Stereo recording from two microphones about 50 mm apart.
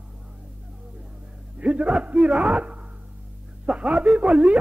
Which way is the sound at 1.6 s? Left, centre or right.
Right.